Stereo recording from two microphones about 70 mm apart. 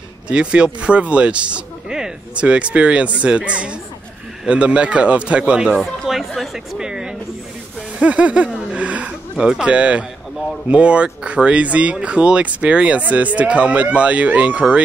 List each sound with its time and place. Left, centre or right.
0.3 s speech: centre
5.8 s chatter: centre
8.0 s speech: centre
8.7 s gasp: centre
10.7 s speech: centre